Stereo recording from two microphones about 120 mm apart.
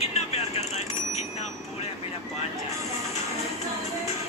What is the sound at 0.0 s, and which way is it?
Vehicle, 65° left (ahead or behind).